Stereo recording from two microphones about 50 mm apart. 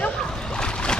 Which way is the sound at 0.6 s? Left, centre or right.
Centre.